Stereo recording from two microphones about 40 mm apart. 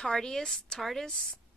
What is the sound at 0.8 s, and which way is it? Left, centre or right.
Speech, centre.